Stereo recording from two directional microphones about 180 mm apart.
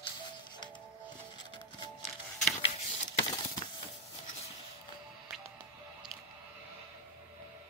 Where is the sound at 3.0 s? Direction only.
20° left (ahead or behind).